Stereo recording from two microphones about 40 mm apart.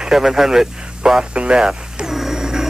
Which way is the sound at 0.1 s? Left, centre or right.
Centre.